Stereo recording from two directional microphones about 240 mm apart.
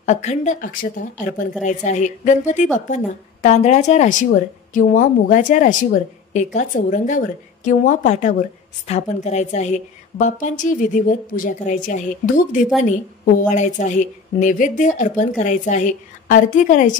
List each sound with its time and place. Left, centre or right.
0.0 s a woman's voice: left